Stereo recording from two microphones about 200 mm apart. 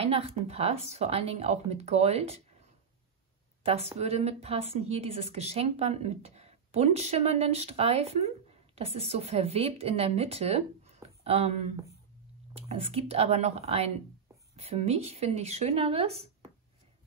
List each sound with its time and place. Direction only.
0.0 s a woman's voice: 30° right (ahead or behind)
3.6 s a woman's voice: 30° right (ahead or behind)
12.5 s a woman's voice: 30° right (ahead or behind)